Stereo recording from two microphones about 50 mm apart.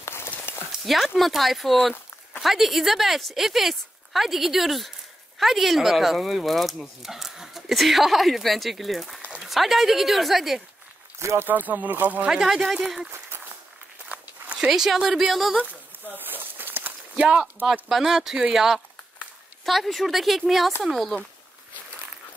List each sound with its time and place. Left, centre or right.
0.0 s a sound: left
0.8 s speech: centre
11.1 s speech: right
11.4 s speech: right
12.3 s speech: centre
14.7 s speech: centre
16.2 s a sound: right
17.8 s speech: centre